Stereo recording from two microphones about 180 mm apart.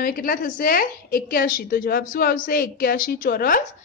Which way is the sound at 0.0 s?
50° left (ahead or behind).